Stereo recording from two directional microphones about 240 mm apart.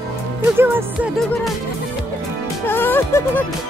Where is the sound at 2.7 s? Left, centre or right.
Centre.